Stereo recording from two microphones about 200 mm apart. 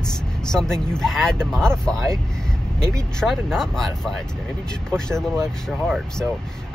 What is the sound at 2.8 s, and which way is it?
Speech, 5° left (ahead or behind).